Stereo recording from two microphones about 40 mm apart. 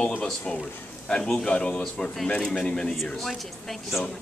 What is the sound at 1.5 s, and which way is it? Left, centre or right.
Speech, left.